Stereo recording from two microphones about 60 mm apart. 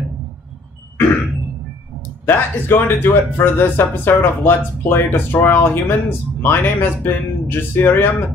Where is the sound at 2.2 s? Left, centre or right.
Left.